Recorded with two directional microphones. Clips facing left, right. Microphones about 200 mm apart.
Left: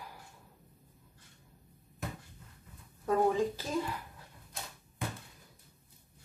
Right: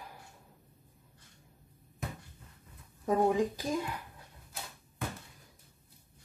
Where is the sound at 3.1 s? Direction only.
15° right (ahead or behind).